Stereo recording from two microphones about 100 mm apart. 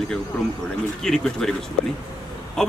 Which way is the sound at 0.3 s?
15° left (ahead or behind).